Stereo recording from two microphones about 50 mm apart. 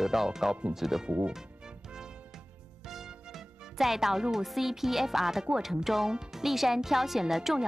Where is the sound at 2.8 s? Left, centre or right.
Centre.